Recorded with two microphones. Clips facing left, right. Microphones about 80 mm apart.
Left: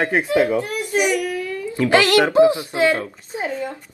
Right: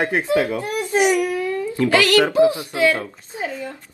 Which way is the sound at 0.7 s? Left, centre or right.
Right.